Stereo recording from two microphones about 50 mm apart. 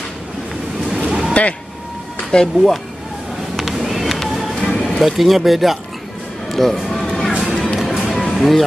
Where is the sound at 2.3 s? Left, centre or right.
Centre.